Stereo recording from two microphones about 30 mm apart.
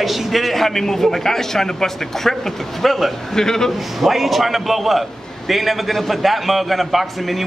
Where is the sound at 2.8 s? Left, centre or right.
Centre.